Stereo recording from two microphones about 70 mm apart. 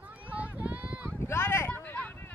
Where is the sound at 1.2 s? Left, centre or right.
Left.